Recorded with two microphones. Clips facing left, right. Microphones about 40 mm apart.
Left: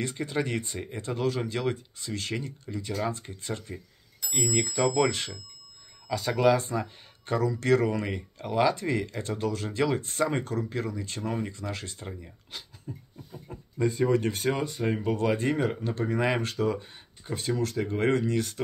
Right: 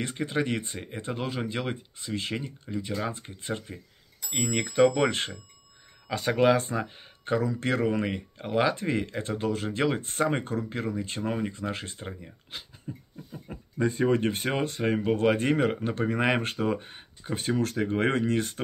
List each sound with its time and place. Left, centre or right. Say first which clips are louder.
0.2 s speech: right 3 dB; right
13.5 s speech: even; right